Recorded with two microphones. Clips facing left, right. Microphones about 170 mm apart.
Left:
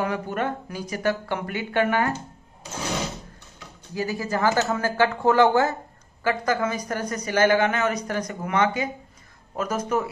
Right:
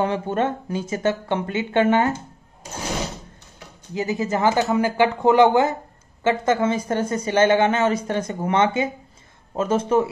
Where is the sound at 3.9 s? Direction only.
20° right (ahead or behind).